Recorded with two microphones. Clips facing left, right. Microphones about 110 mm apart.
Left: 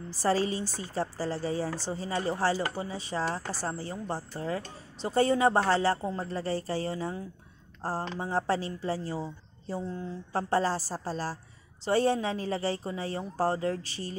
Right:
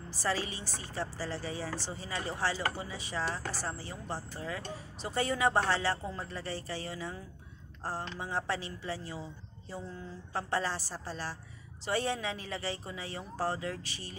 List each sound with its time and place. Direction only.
0.2 s a woman's voice: 35° left (ahead or behind)